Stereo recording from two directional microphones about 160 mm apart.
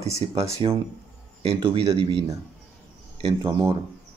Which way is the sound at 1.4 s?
35° right (ahead or behind).